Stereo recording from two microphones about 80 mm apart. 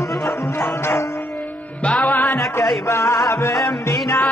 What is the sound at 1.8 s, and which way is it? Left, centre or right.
Music, centre.